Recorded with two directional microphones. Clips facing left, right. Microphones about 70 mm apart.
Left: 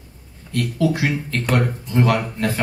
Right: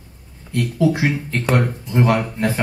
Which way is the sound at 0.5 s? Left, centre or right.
Centre.